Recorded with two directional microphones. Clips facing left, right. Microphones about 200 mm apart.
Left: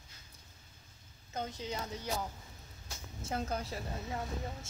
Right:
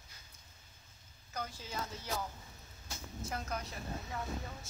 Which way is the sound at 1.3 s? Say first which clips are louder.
Left 4 dB; 20° left (ahead or behind).